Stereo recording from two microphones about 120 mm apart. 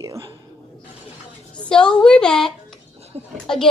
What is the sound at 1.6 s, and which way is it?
A woman's voice, 10° left (ahead or behind).